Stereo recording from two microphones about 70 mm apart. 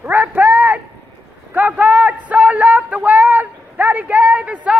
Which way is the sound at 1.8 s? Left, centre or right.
Right.